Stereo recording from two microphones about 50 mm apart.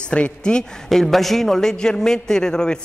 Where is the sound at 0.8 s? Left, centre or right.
Centre.